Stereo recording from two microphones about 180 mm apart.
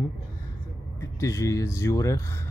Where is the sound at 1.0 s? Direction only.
15° left (ahead or behind).